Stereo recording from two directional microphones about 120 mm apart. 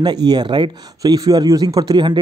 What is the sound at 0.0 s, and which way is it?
A man's voice, 35° right (ahead or behind).